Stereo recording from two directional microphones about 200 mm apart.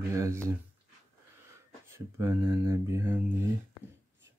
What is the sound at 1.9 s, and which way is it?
Speech, 10° right (ahead or behind).